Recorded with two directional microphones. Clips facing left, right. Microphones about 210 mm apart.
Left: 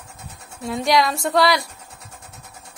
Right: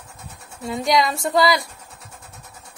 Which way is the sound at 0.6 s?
Centre (ahead or behind).